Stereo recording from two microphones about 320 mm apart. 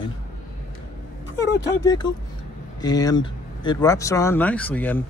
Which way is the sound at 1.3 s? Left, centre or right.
Left.